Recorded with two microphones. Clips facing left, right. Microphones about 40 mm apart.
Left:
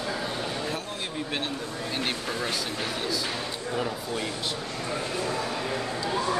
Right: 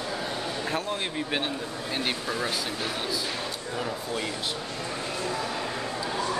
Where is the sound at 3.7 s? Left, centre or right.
Centre.